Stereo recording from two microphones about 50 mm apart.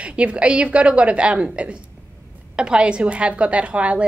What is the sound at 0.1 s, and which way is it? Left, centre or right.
A woman's voice, right.